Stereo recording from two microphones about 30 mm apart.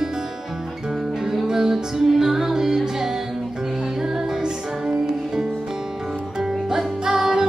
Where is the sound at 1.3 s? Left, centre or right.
Centre.